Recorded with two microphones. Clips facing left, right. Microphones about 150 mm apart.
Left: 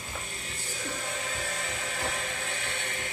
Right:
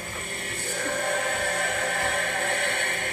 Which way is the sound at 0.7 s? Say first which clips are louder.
Right 9 dB; 60° right (ahead or behind).